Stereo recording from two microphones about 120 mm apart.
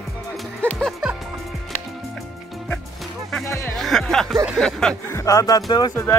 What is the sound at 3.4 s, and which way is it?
Speech, 25° left (ahead or behind).